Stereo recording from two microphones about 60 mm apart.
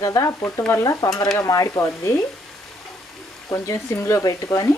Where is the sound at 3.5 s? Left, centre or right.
Left.